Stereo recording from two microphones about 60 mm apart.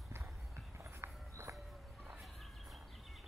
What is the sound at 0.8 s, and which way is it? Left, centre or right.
Walk, right.